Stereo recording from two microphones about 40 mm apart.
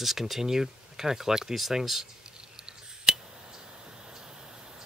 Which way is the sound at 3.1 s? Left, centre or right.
Centre.